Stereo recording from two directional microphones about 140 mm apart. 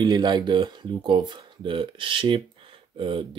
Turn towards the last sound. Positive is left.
turn(degrees=-40)  # may be behind; listen again after turning